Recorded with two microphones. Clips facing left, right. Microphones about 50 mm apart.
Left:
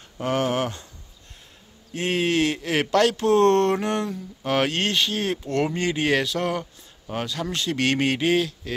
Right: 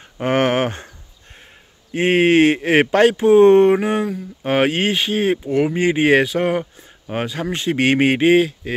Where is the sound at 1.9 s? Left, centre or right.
Right; by 4.1 s centre.